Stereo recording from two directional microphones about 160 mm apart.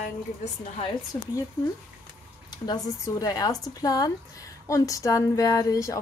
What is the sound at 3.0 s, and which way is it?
Speech, 25° left (ahead or behind).